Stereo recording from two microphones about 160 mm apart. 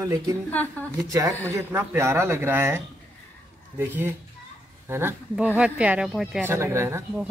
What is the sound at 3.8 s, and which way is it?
Speech, 10° right (ahead or behind).